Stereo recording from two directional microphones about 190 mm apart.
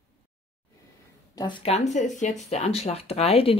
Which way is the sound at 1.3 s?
25° left (ahead or behind).